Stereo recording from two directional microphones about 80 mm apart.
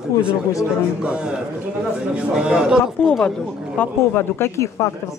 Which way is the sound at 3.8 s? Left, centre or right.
Left.